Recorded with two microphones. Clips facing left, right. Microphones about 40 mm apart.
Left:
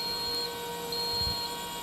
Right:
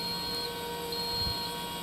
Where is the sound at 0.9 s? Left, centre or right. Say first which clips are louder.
Left 1 dB; centre.